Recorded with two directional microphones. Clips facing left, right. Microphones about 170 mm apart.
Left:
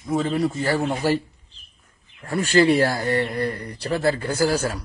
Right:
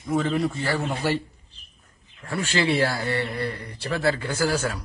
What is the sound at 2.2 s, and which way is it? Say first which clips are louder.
A man's voice: left 7 dB; 40° left (ahead or behind).